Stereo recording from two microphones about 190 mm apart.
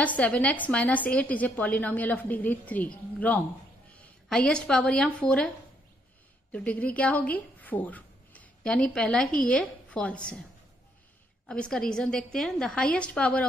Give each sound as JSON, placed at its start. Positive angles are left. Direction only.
{"t": 0.0, "sound": "a woman's voice", "side_deg": 5}
{"t": 6.5, "sound": "speech", "side_deg": 5}
{"t": 11.4, "sound": "a woman's voice", "side_deg": 5}